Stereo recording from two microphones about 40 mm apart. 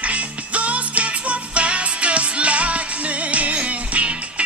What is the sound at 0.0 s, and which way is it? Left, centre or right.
Music, right.